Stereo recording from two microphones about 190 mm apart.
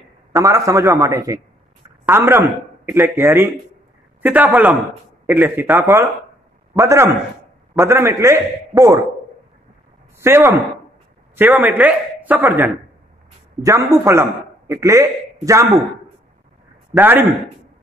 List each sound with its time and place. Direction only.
0.3 s a man's voice: 15° right (ahead or behind)
10.2 s a man's voice: 15° right (ahead or behind)
16.9 s a man's voice: 10° right (ahead or behind)